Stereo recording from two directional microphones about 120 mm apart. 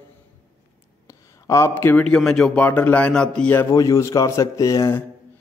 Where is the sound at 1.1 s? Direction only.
25° left (ahead or behind).